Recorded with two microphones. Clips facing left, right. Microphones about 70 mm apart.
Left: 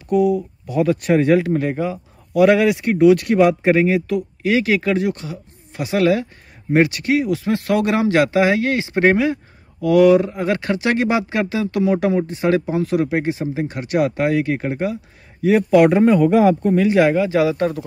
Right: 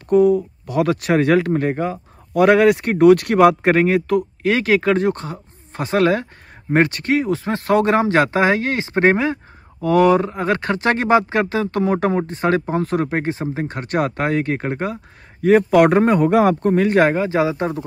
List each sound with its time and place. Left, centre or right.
0.1 s a man's voice: right
0.7 s a man's voice: right